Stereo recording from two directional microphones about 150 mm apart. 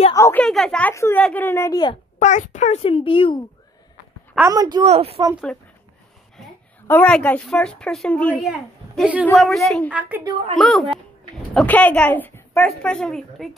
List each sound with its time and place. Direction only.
0.1 s a sound: 20° left (ahead or behind)
0.4 s a woman's voice: 5° left (ahead or behind); by 2.0 s 25° left (ahead or behind)
2.1 s a child's voice: 55° left (ahead or behind); by 3.4 s 35° left (ahead or behind)
4.4 s a woman's voice: 25° right (ahead or behind)
4.8 s speech: 40° right (ahead or behind)
5.5 s speech: 5° left (ahead or behind)
6.9 s speech: 10° left (ahead or behind)
9.9 s a woman's voice: 10° right (ahead or behind)
10.6 s a woman's voice: centre (ahead or behind)